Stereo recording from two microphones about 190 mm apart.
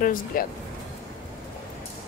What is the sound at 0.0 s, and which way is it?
Speech, 50° left (ahead or behind).